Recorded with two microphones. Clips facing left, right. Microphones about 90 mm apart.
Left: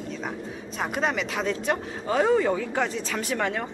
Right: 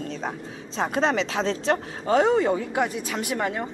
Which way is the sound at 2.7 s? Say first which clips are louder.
Right 1 dB; 10° right (ahead or behind).